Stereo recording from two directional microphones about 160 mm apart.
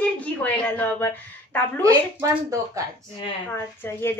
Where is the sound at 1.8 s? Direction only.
20° right (ahead or behind).